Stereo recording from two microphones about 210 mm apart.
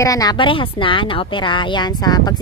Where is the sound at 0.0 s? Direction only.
15° left (ahead or behind).